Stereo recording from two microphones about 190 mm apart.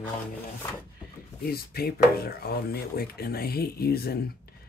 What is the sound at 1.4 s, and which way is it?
Speech, 55° left (ahead or behind).